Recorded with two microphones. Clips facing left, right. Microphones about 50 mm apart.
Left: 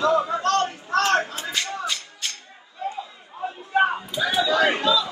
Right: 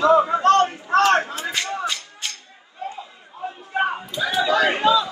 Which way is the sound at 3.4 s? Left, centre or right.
Left.